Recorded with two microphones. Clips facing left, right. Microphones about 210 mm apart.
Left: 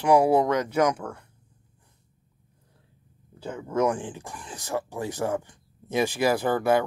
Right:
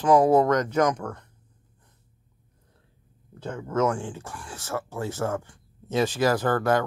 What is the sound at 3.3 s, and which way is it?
Speech, 10° left (ahead or behind).